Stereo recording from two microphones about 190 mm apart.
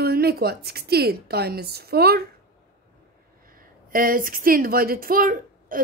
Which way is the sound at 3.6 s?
45° right (ahead or behind).